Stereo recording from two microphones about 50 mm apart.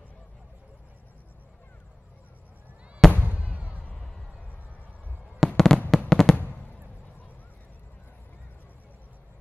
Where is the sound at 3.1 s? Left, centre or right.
Right.